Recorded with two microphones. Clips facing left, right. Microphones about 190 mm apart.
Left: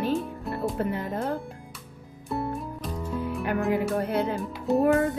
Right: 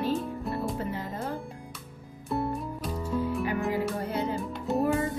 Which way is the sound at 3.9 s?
60° left (ahead or behind).